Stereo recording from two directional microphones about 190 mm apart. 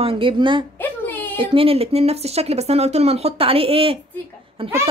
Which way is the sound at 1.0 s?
10° left (ahead or behind).